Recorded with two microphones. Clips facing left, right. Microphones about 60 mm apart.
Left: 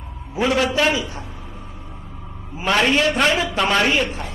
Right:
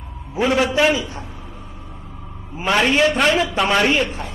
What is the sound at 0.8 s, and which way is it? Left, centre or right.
Speech, centre.